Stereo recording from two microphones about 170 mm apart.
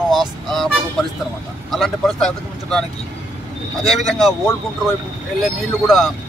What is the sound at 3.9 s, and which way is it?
Speech, centre (ahead or behind).